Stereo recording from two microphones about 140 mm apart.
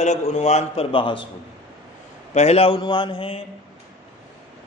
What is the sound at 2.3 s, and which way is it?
A man's voice, 50° left (ahead or behind).